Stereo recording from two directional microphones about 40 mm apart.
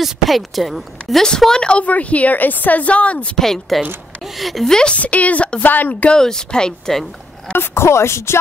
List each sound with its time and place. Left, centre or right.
0.0 s a woman's voice: centre
1.5 s speech: left
1.9 s a woman's voice: left
3.3 s a woman's voice: centre
4.6 s speech: centre
4.9 s a woman's voice: left
5.6 s speech: left
6.0 s speech: centre
7.5 s music: left